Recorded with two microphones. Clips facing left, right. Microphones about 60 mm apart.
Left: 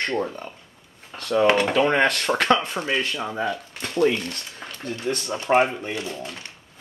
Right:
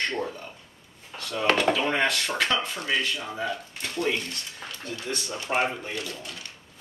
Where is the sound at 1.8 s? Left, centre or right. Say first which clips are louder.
Left 6 dB; left.